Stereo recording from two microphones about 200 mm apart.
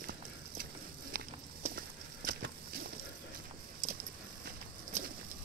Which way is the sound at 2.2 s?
50° right (ahead or behind).